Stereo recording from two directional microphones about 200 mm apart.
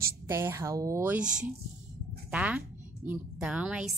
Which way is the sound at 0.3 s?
15° right (ahead or behind).